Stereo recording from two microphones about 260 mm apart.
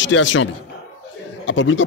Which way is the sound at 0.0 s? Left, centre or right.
Left.